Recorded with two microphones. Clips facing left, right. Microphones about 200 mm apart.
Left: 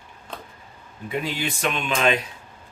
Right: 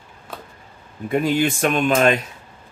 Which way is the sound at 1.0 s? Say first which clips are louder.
Right 9 dB; 50° right (ahead or behind).